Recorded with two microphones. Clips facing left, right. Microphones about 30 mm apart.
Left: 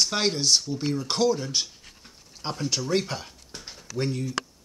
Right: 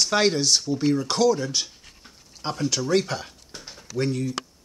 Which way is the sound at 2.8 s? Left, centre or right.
Centre.